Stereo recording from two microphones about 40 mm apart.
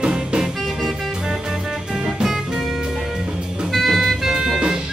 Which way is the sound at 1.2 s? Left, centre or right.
Centre.